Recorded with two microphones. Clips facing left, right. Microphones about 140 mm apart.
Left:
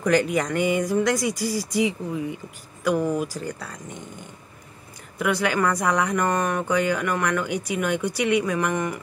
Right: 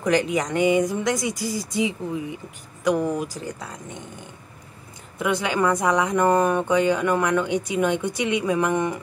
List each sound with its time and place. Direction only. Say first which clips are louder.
0.0 s speech: even; 20° right (ahead or behind)
5.2 s speech: even; 20° right (ahead or behind)